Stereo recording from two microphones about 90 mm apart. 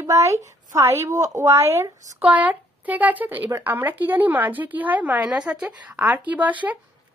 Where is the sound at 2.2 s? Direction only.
15° right (ahead or behind).